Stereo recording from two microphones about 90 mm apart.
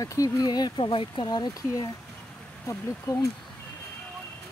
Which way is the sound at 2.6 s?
40° left (ahead or behind).